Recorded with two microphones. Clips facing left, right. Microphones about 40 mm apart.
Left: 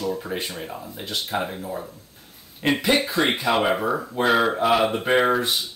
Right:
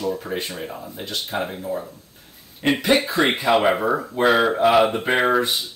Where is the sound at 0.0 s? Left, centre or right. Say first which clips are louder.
Right 2 dB; centre.